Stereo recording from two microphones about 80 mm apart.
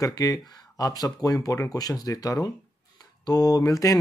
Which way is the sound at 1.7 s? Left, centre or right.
Left.